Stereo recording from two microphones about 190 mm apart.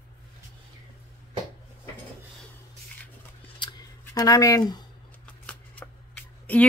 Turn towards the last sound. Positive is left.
turn(degrees=10)  # may be behind; listen again after turning